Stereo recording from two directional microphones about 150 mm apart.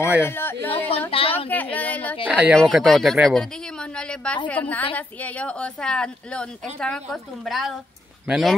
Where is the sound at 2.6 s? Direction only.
Centre (ahead or behind).